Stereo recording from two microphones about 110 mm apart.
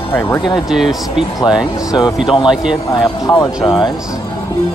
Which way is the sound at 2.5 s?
5° right (ahead or behind).